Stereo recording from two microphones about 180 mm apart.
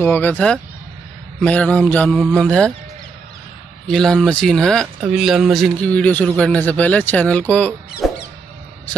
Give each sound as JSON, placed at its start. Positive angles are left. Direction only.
{"t": 0.0, "sound": "a man's voice", "side_deg": 10}
{"t": 3.8, "sound": "a man's voice", "side_deg": 5}
{"t": 8.0, "sound": "music", "side_deg": 0}